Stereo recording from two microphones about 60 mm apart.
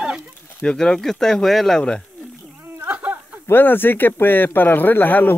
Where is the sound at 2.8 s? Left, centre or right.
Right.